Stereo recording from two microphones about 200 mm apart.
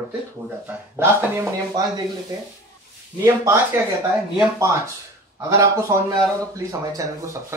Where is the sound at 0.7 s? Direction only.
10° right (ahead or behind).